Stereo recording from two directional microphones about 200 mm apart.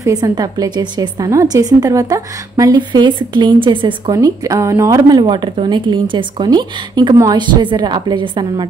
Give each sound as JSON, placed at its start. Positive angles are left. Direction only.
{"t": 0.0, "sound": "a woman's voice", "side_deg": -20}